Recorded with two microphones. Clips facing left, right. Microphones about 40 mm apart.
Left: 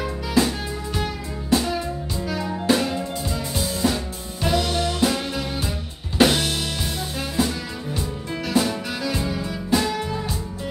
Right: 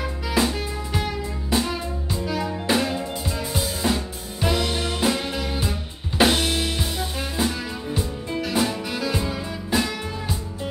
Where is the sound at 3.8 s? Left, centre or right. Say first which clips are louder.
Left 1 dB; right.